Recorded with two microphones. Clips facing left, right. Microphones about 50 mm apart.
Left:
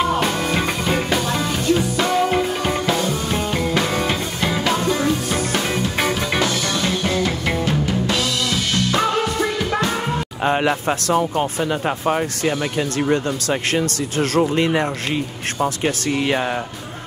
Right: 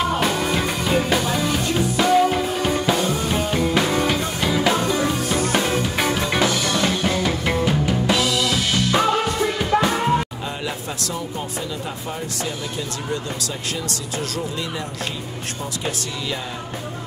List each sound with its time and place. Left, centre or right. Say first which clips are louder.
0.1 s music: left 1 dB; centre
2.3 s music: left 1 dB; centre
2.9 s music: even; centre
3.9 s music: right 1 dB; centre
4.6 s music: left 3 dB; centre
5.9 s music: left 1 dB; centre
6.4 s music: right 1 dB; centre
10.4 s speech: left 10 dB; left
13.1 s speech: left 6 dB; left